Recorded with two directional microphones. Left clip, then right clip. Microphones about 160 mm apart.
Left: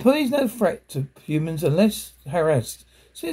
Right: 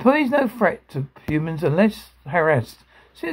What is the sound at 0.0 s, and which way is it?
Speech, centre (ahead or behind).